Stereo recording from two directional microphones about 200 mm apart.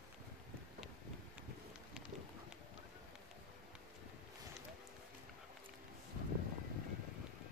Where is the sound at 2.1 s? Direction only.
35° right (ahead or behind).